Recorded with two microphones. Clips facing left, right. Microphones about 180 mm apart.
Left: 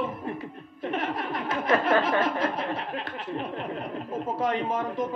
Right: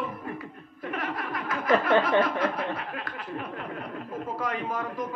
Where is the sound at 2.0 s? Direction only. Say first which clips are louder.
Right 1 dB; 25° left (ahead or behind).